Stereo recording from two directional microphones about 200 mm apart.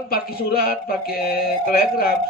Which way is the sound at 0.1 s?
50° left (ahead or behind).